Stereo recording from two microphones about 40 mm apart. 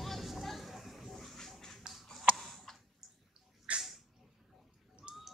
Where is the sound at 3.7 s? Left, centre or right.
Right.